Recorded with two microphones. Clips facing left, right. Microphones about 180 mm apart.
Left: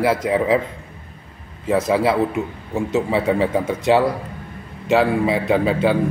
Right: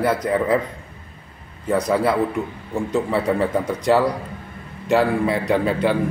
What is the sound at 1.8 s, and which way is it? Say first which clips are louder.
Speech: left 1 dB; 5° left (ahead or behind).